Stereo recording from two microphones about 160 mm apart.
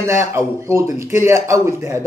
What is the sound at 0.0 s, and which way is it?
Speech, 15° right (ahead or behind).